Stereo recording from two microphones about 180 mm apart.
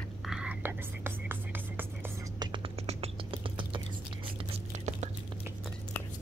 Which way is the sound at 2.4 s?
30° right (ahead or behind).